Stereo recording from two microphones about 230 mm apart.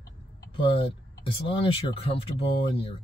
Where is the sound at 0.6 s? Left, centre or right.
Left.